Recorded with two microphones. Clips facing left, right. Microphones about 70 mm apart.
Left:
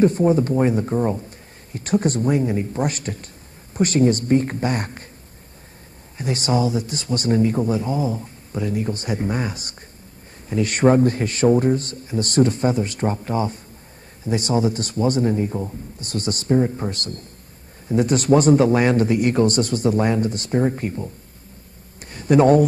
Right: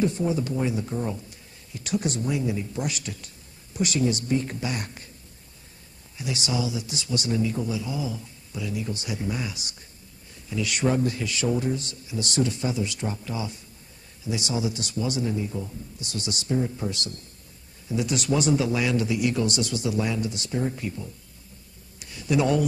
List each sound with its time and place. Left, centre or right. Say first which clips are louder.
0.0 s a man's voice: left 8 dB; left
6.1 s a man's voice: left 7 dB; left
22.0 s a sound: left 9 dB; left